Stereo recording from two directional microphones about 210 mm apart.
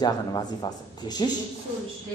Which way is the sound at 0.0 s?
20° left (ahead or behind).